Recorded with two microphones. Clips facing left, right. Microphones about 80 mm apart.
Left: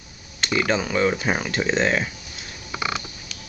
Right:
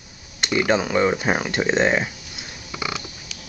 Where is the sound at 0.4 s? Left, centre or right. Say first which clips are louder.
Right 2 dB; centre.